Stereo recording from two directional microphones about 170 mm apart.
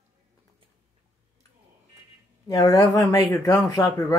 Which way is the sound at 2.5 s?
20° left (ahead or behind).